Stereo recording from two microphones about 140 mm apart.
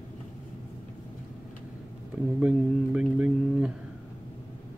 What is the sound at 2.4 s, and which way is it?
Speech, 5° right (ahead or behind).